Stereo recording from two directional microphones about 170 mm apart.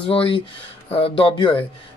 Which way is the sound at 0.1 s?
30° left (ahead or behind).